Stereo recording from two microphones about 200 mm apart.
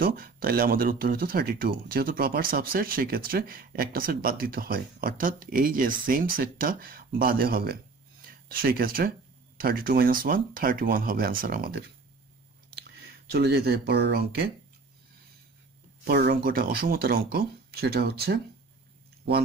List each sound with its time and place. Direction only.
0.0 s speech: 45° right (ahead or behind)
13.3 s speech: 55° right (ahead or behind)
16.1 s speech: 50° right (ahead or behind)